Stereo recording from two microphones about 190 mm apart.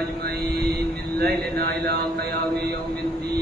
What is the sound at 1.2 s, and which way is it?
Speech, 55° right (ahead or behind).